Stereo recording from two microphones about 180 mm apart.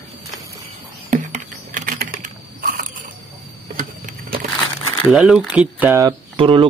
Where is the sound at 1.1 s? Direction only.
45° right (ahead or behind).